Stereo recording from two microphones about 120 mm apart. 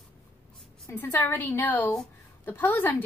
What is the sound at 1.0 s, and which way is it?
A woman's voice, 15° left (ahead or behind).